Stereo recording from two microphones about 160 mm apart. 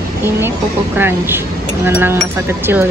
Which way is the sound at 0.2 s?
15° right (ahead or behind).